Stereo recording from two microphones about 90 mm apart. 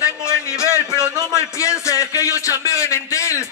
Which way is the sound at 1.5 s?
35° left (ahead or behind).